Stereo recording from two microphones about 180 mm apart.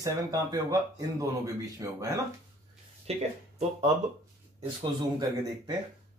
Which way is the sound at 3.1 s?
35° right (ahead or behind).